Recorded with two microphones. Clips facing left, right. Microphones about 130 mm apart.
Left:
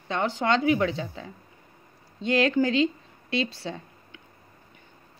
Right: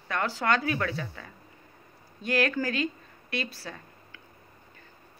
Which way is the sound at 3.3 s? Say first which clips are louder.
Left 6 dB; 25° left (ahead or behind).